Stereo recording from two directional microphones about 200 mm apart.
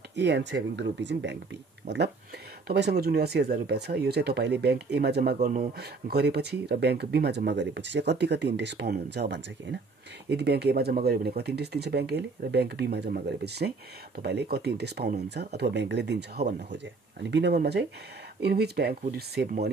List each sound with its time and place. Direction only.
0.1 s speech: 60° right (ahead or behind)
2.7 s speech: 55° right (ahead or behind)
5.4 s speech: 35° right (ahead or behind)
5.8 s speech: 55° right (ahead or behind)